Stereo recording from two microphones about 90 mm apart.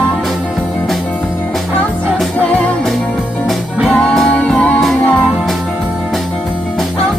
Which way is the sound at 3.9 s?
10° left (ahead or behind).